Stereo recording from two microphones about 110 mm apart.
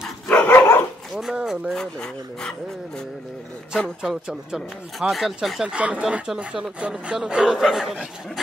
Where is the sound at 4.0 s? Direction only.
5° right (ahead or behind).